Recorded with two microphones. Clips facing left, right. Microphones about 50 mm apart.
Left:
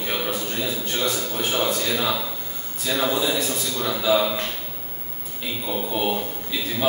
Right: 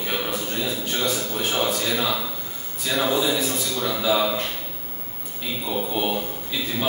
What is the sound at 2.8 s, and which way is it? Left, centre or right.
Speech, centre.